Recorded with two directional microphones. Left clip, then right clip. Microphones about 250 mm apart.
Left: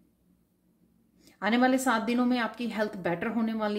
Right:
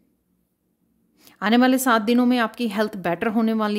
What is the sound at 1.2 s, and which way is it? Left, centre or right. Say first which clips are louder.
A woman's voice: right 7 dB; right.